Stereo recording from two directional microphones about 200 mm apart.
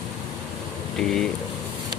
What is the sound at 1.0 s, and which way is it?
Speech, centre (ahead or behind).